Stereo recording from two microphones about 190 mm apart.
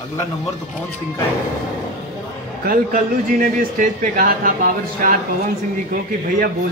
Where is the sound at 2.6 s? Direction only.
50° right (ahead or behind).